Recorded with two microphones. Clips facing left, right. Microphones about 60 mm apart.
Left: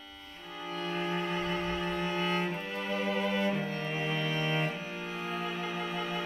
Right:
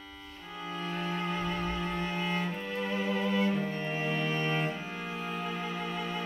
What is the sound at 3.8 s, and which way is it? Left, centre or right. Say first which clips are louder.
Music: right 1 dB; right.